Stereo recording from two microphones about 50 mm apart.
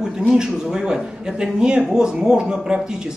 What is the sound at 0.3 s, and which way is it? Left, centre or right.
Speech, centre.